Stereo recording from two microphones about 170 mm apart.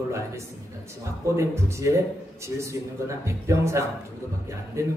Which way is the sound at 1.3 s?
15° right (ahead or behind).